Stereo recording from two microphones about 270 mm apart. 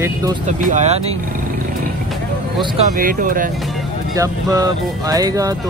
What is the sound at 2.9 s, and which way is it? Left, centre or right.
Speech, right.